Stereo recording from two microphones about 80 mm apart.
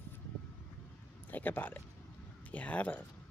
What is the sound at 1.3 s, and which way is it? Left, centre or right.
Speech, left.